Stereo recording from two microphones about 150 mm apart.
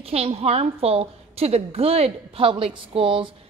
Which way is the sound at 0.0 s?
40° right (ahead or behind).